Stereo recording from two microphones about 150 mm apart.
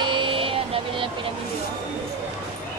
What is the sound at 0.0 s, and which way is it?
Vehicle, 35° right (ahead or behind).